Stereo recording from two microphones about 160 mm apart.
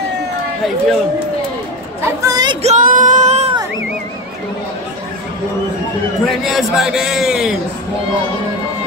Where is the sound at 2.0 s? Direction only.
25° right (ahead or behind).